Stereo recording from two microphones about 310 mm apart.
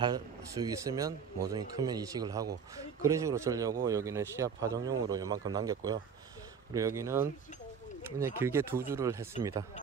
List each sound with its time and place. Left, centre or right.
0.0 s speech: centre